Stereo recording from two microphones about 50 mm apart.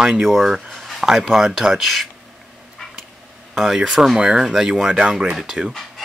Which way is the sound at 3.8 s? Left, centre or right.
Centre.